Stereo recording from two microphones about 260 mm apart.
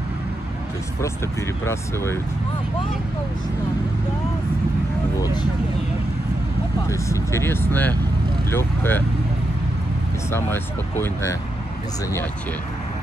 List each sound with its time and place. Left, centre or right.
1.6 s speech: centre
5.2 s speech: centre
6.9 s speech: centre
10.3 s speech: centre